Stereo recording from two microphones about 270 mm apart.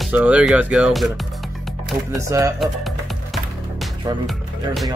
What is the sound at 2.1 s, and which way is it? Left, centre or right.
Speech, centre.